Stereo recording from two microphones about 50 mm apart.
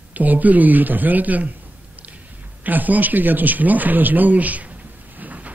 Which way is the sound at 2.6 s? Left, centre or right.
Right.